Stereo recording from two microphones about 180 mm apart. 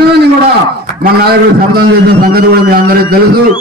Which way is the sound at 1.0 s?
60° right (ahead or behind).